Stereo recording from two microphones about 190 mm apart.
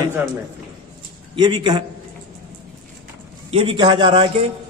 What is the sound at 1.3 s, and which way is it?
Speech, 25° right (ahead or behind).